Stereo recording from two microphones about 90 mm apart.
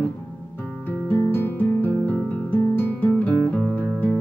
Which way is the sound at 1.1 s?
25° left (ahead or behind).